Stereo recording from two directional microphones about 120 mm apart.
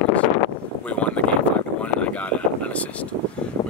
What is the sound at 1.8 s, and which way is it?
Vehicle, 10° left (ahead or behind).